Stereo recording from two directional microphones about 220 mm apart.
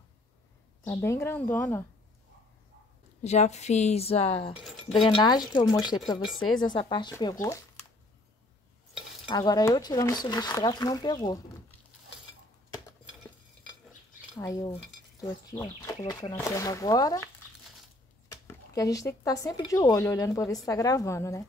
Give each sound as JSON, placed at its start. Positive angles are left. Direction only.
{"t": 0.8, "sound": "speech", "side_deg": 10}
{"t": 3.2, "sound": "speech", "side_deg": 30}
{"t": 4.6, "sound": "speech", "side_deg": 0}
{"t": 5.0, "sound": "speech", "side_deg": 20}
{"t": 6.2, "sound": "speech", "side_deg": 0}
{"t": 6.6, "sound": "speech", "side_deg": 20}
{"t": 9.3, "sound": "speech", "side_deg": 20}
{"t": 14.3, "sound": "speech", "side_deg": 15}
{"t": 15.9, "sound": "speech", "side_deg": 15}
{"t": 18.3, "sound": "speech", "side_deg": 15}